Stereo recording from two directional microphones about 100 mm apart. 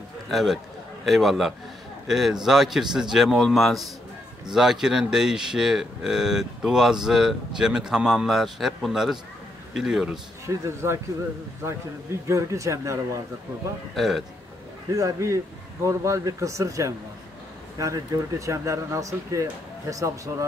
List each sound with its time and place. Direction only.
0.3 s speech: centre (ahead or behind)
10.4 s speech: 30° right (ahead or behind)
13.9 s speech: centre (ahead or behind)
14.9 s speech: 35° right (ahead or behind)